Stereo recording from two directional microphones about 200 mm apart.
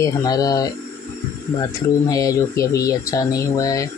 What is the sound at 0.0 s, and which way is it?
Speech, 20° left (ahead or behind).